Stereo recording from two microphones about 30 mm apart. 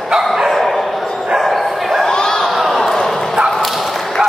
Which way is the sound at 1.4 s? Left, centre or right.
Centre.